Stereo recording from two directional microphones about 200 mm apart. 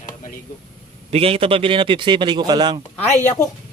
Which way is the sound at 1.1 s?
30° right (ahead or behind).